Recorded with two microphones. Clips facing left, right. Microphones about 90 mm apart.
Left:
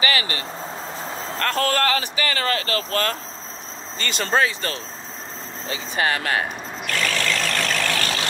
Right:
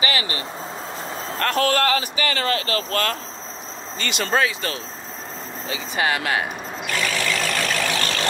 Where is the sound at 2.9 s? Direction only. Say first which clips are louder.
Even; 35° left (ahead or behind).